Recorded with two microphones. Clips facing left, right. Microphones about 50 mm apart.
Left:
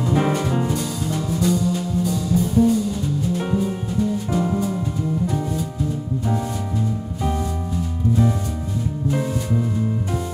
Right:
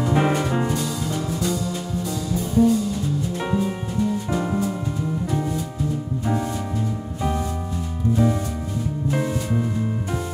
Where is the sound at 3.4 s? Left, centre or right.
Right.